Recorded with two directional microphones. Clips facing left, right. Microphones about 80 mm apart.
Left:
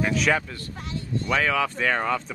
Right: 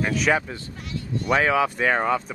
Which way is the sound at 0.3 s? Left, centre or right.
Centre.